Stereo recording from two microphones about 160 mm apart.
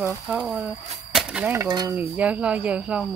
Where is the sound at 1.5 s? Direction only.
25° right (ahead or behind).